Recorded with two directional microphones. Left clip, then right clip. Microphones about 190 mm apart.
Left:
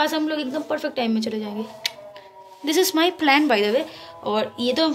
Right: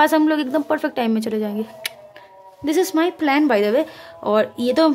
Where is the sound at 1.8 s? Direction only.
45° right (ahead or behind).